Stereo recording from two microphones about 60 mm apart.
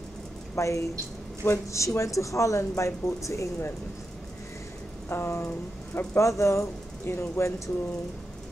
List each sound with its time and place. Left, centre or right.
0.6 s speech: left
5.1 s speech: left